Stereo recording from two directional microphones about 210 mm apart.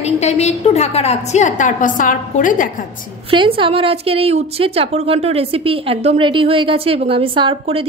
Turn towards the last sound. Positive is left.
turn(degrees=-25)  # may be behind; listen again after turning